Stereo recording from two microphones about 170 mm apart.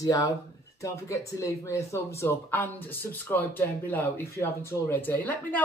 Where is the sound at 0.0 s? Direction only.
20° left (ahead or behind).